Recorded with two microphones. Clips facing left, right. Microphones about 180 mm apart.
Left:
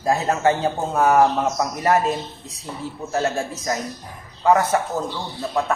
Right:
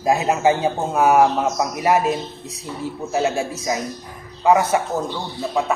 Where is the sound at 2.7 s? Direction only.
45° left (ahead or behind).